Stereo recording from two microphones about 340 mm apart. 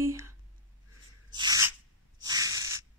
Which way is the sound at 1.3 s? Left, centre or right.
Centre.